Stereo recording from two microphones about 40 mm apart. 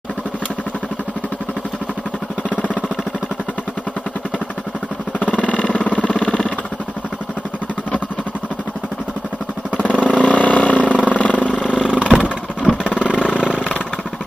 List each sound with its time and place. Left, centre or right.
5.2 s vehicle: left
9.8 s vehicle: left
11.9 s vehicle: right